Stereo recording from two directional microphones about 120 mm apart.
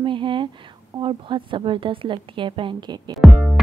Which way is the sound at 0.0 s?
45° right (ahead or behind).